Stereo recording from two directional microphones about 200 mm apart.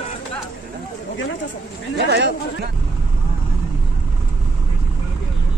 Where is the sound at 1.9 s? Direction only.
60° right (ahead or behind).